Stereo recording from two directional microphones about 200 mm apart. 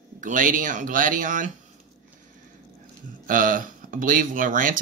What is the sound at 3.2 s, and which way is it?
A man's voice, 45° right (ahead or behind).